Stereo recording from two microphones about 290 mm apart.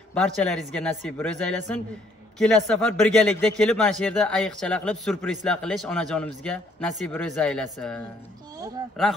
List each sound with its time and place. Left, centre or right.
0.1 s a man's voice: centre